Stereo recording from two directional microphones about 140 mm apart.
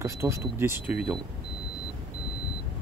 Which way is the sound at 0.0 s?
20° right (ahead or behind).